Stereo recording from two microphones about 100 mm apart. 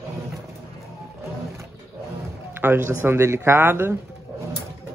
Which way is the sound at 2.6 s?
25° right (ahead or behind).